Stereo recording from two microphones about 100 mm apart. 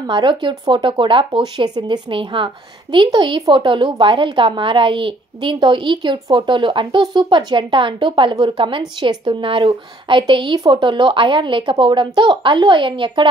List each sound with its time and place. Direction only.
0.0 s speech: 50° right (ahead or behind)